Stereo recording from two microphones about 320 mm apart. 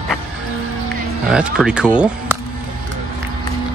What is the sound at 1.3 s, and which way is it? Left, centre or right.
Speech, centre.